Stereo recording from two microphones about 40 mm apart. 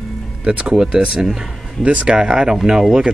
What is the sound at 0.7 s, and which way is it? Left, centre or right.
Speech, centre.